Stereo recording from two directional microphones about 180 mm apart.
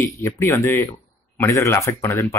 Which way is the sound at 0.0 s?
15° left (ahead or behind).